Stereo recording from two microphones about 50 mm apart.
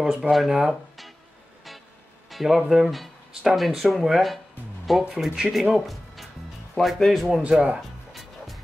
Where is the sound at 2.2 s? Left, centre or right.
Centre.